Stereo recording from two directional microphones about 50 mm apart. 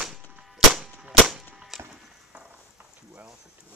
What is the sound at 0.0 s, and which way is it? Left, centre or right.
Cap gun, centre.